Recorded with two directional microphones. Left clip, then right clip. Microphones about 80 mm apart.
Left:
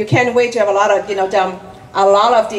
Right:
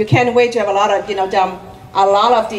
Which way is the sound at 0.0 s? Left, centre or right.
Centre.